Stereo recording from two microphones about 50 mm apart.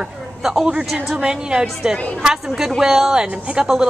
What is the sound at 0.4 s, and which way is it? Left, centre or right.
A man's voice, centre.